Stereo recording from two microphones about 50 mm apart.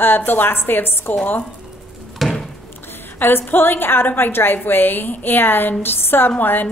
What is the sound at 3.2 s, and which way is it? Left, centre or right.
A woman's voice, left.